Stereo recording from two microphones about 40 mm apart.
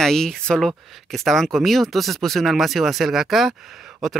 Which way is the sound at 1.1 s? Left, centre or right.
Centre.